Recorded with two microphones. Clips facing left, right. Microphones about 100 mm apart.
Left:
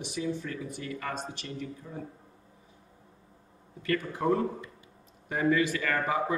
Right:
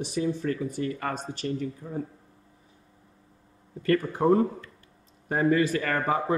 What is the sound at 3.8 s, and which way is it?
Speech, 35° right (ahead or behind).